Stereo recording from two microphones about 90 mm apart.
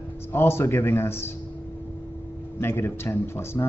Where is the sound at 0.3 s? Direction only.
25° left (ahead or behind).